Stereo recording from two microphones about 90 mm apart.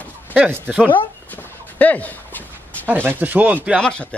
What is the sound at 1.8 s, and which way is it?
Speech, 15° left (ahead or behind).